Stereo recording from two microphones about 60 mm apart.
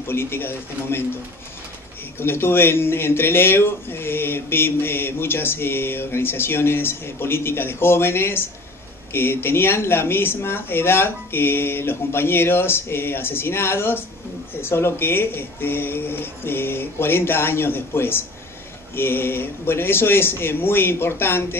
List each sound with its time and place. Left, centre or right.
0.0 s speech: left
2.1 s speech: left